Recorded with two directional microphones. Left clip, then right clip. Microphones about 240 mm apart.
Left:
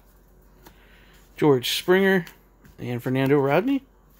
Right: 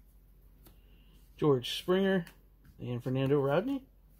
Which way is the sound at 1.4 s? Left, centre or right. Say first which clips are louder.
Left 9 dB; centre.